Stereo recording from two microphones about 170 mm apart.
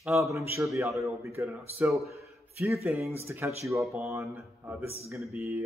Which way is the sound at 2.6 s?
15° right (ahead or behind).